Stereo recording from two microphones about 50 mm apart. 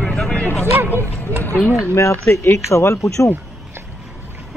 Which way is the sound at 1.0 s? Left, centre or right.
Right.